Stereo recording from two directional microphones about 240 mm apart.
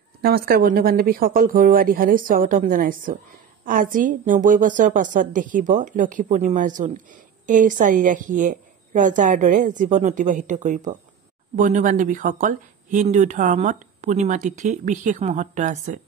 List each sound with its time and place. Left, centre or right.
0.2 s a woman's voice: right